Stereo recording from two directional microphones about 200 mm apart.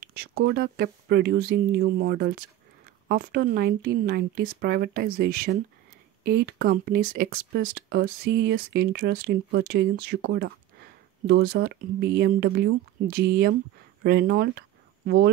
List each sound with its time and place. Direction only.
0.0 s speech: 50° right (ahead or behind)